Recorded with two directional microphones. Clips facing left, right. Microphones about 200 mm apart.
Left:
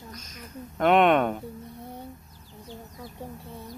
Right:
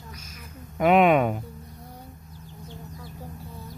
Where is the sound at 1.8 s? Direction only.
25° left (ahead or behind).